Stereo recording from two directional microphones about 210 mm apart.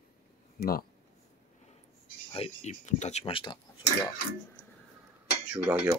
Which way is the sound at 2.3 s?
30° left (ahead or behind).